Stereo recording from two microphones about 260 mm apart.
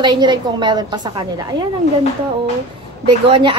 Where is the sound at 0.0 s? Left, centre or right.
Centre.